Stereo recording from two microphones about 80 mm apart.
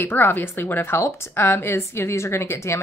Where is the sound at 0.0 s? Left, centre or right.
Left.